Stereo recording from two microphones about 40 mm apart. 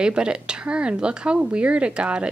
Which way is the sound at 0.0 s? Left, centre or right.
Right.